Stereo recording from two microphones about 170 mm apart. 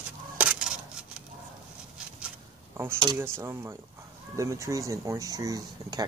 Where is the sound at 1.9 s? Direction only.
5° right (ahead or behind).